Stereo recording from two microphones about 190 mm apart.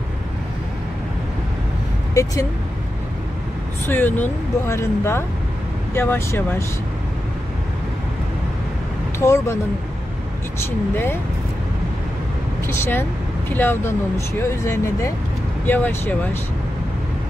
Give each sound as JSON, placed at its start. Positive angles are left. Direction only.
{"t": 2.2, "sound": "speech", "side_deg": 15}
{"t": 3.8, "sound": "speech", "side_deg": 10}
{"t": 9.2, "sound": "speech", "side_deg": 15}
{"t": 12.6, "sound": "speech", "side_deg": 10}